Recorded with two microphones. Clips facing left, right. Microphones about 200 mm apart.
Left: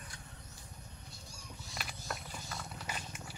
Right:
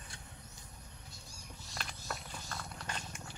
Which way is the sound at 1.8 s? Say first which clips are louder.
Even; 5° left (ahead or behind).